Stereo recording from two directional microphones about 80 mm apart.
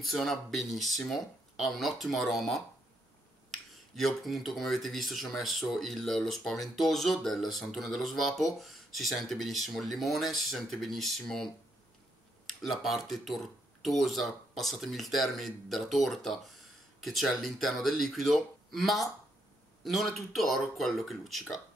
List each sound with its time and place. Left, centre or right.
0.0 s speech: centre
3.9 s speech: centre